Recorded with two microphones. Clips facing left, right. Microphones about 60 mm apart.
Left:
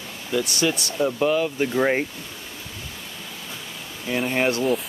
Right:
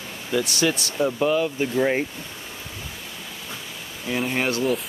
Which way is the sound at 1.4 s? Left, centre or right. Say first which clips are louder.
Left 1 dB; centre.